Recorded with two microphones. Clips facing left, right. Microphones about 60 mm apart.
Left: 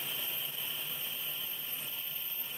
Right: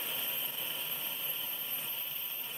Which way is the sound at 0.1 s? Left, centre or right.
Centre.